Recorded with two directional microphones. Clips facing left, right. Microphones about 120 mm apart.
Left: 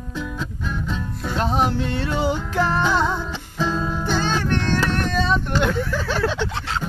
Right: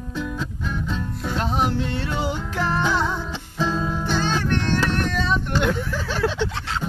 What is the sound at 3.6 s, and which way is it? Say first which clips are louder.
Music: left 1 dB; 5° left (ahead or behind).